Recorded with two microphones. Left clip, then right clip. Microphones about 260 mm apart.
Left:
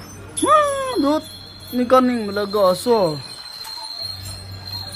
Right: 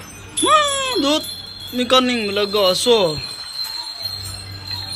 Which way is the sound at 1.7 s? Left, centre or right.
Centre.